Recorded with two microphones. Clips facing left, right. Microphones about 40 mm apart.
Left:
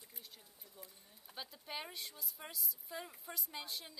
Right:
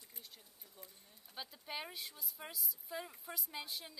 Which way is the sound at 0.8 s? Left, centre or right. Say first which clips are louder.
Left 1 dB; centre.